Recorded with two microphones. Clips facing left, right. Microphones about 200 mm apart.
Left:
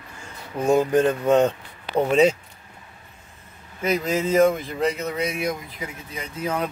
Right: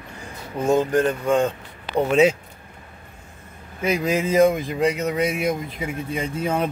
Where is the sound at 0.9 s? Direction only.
20° left (ahead or behind).